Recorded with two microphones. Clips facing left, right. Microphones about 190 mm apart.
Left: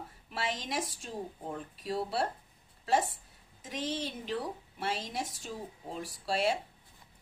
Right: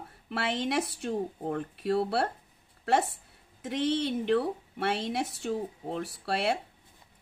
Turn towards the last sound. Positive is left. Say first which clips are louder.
# right 1 dB
turn(degrees=-65)  # may be behind; listen again after turning